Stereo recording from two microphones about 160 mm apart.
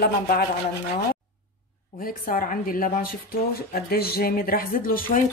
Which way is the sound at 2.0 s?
60° left (ahead or behind).